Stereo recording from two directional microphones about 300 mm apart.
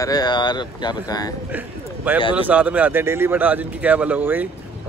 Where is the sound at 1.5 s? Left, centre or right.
Centre.